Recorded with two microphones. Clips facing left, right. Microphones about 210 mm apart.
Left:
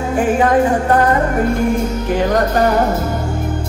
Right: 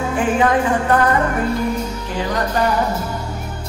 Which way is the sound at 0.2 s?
40° left (ahead or behind).